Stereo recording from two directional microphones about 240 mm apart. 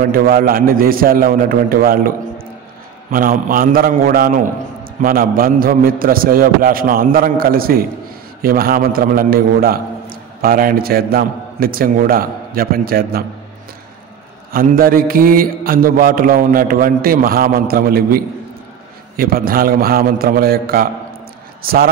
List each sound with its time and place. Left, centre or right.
0.1 s a man's voice: right
14.5 s a man's voice: right